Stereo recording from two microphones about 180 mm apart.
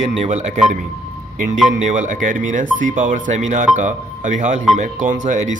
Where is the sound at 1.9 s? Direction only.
45° right (ahead or behind).